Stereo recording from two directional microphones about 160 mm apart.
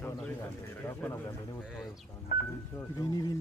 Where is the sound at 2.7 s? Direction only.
20° left (ahead or behind).